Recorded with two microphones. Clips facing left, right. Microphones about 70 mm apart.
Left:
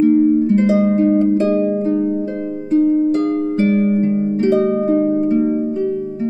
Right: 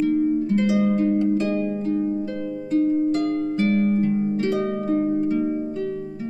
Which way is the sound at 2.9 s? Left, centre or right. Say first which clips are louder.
Left 6 dB; centre.